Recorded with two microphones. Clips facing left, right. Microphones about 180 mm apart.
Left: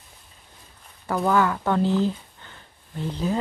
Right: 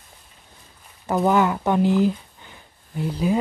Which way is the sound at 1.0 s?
20° right (ahead or behind).